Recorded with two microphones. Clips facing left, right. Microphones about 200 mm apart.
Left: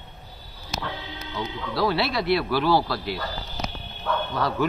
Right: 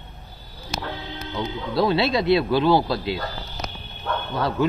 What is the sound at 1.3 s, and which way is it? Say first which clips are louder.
Speech: right 4 dB; 20° right (ahead or behind).